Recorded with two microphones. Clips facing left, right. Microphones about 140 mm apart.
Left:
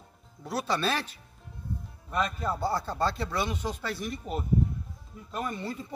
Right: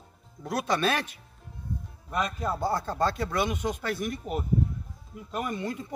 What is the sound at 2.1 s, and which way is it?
Speech, 15° right (ahead or behind).